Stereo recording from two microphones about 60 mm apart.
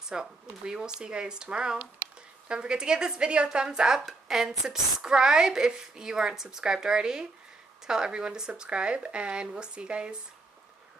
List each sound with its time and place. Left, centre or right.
0.0 s speech: centre